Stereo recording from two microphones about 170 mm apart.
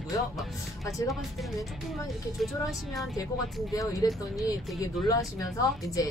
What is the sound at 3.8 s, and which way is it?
Speech, 20° left (ahead or behind).